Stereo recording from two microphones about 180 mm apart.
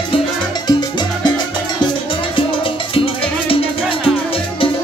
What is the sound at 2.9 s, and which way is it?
Music, 30° left (ahead or behind).